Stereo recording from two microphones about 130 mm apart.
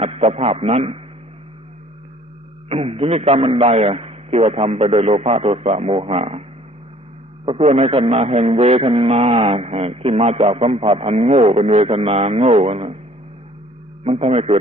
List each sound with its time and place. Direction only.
0.0 s a man's voice: 50° right (ahead or behind)
2.7 s a man's voice: 50° right (ahead or behind)
7.4 s a man's voice: 50° right (ahead or behind)
14.0 s a man's voice: 50° right (ahead or behind)